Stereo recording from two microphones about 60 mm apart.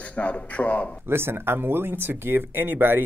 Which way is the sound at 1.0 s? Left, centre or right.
Right.